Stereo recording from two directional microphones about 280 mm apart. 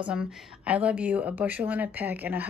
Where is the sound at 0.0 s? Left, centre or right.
Centre.